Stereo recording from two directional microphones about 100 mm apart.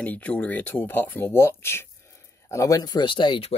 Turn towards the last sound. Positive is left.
turn(degrees=55)  # may be behind; listen again after turning